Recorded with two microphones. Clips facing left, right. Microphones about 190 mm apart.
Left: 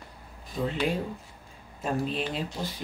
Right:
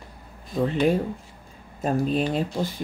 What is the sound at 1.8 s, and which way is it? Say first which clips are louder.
Speech: right 6 dB; 45° right (ahead or behind).